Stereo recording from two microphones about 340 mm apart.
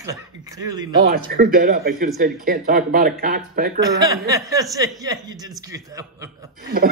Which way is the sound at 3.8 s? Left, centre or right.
Centre.